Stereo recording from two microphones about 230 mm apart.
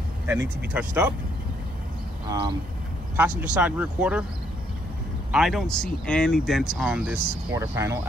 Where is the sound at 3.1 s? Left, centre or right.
Centre.